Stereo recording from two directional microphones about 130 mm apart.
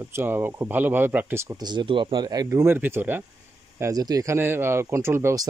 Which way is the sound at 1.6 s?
35° right (ahead or behind).